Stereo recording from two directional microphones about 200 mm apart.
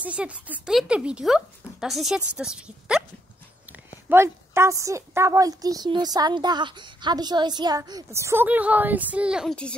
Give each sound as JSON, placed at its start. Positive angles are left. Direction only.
{"t": 0.0, "sound": "a woman's voice", "side_deg": -5}